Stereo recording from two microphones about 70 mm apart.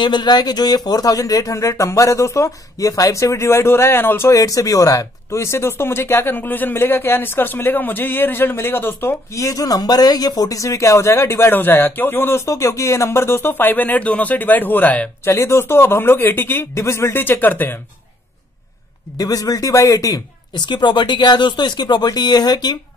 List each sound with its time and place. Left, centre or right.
0.0 s speech: left
4.3 s speech: left
9.3 s speech: left
12.4 s speech: left
15.2 s speech: left
16.7 s speech: left
19.1 s speech: left
20.5 s speech: left